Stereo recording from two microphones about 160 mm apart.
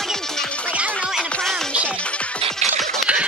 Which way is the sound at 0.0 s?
5° left (ahead or behind).